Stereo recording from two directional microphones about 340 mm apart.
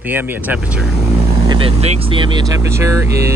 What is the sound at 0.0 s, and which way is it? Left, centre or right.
Speech, centre.